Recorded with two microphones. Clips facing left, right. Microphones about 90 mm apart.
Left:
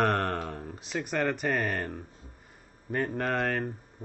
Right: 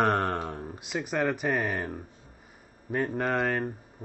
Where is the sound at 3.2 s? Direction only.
Centre (ahead or behind).